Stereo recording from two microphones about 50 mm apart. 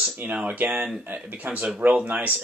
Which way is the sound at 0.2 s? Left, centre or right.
Right.